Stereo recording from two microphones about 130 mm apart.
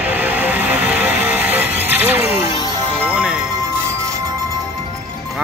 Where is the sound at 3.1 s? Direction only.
10° right (ahead or behind).